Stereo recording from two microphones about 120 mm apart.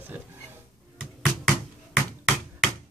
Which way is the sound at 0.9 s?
Centre (ahead or behind).